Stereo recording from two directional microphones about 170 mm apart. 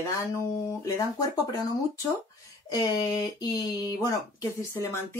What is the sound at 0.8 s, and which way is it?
Speech, 20° left (ahead or behind).